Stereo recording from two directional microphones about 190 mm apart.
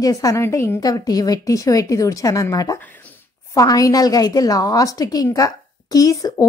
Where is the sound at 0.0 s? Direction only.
20° left (ahead or behind).